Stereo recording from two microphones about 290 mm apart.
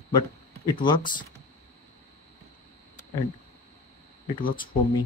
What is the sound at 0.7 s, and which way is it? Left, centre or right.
Speech, centre.